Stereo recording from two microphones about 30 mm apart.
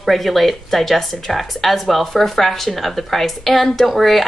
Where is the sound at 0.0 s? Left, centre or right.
Centre.